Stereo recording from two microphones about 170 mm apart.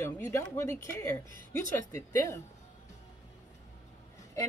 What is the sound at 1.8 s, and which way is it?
Speech, 20° left (ahead or behind).